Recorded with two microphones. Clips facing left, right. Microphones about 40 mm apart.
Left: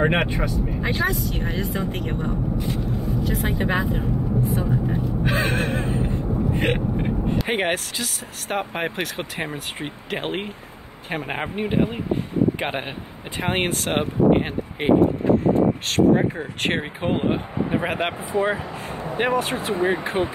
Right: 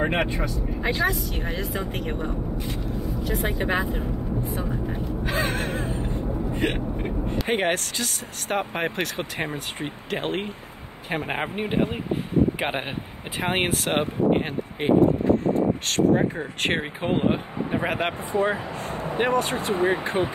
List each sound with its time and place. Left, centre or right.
0.0 s speech: left
0.8 s speech: centre
5.2 s gasp: left
7.4 s speech: centre
11.1 s speech: centre
15.9 s speech: centre